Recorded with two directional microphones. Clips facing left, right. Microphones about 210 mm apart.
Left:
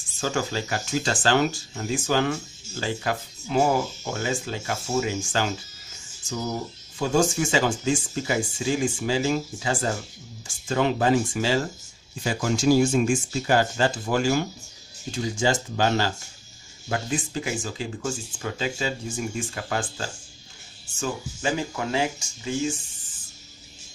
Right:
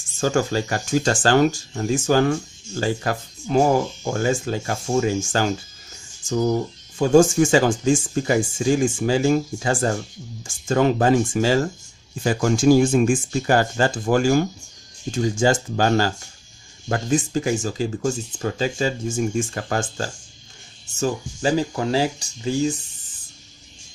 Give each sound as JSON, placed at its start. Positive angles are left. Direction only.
{"t": 0.2, "sound": "speech", "side_deg": -45}
{"t": 7.0, "sound": "speech", "side_deg": -50}